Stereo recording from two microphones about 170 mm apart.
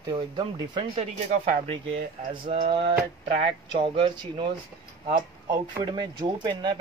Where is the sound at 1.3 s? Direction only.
50° right (ahead or behind).